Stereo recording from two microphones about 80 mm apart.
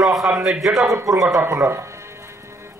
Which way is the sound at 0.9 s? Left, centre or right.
Right.